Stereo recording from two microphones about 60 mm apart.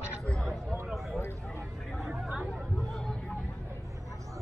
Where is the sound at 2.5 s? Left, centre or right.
Centre.